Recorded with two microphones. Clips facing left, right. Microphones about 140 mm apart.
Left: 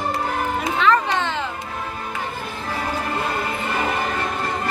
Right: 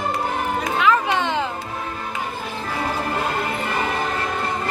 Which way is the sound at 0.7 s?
5° right (ahead or behind).